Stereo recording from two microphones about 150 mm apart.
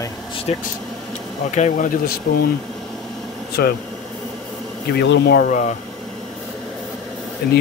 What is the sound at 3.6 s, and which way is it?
Speech, 90° left.